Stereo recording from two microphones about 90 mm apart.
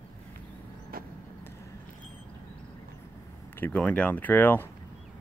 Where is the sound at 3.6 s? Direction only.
20° left (ahead or behind).